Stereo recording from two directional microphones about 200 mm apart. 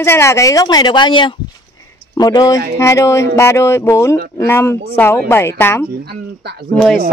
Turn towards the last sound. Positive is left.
turn(degrees=0)  # may be behind; listen again after turning